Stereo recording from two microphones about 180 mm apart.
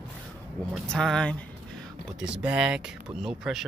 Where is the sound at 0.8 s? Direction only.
5° left (ahead or behind).